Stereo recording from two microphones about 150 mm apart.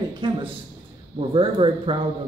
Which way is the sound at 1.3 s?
35° right (ahead or behind).